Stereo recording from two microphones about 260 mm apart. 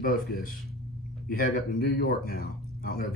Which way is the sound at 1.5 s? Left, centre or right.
Left.